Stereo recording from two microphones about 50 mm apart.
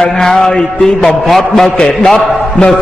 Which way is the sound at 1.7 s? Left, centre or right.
Centre.